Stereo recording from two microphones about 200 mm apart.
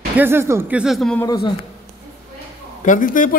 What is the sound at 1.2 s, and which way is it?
Speech, 20° left (ahead or behind).